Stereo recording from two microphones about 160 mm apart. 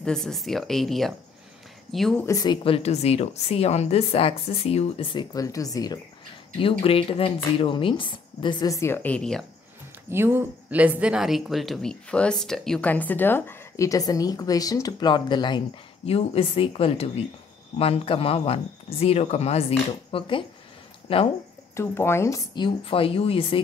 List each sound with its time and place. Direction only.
0.0 s speech: 5° left (ahead or behind)
2.2 s a woman's voice: 25° left (ahead or behind)
5.3 s speech: 20° left (ahead or behind)
6.6 s speech: 35° left (ahead or behind); by 9.5 s 5° left (ahead or behind)
10.1 s a woman's voice: 15° right (ahead or behind); by 21.2 s 35° left (ahead or behind)
21.7 s speech: 15° left (ahead or behind); by 23.6 s 35° left (ahead or behind)